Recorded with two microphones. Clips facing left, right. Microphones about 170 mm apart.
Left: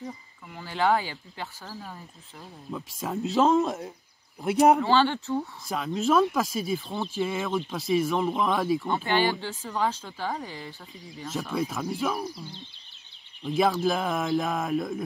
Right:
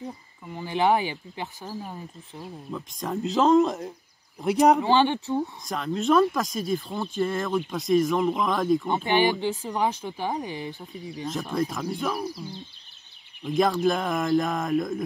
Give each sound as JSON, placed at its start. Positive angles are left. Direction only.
{"t": 0.6, "sound": "speech", "side_deg": -15}
{"t": 2.7, "sound": "speech", "side_deg": 5}
{"t": 4.7, "sound": "speech", "side_deg": -15}
{"t": 5.9, "sound": "speech", "side_deg": 0}
{"t": 8.8, "sound": "speech", "side_deg": -20}
{"t": 11.5, "sound": "speech", "side_deg": 5}
{"t": 13.5, "sound": "speech", "side_deg": 5}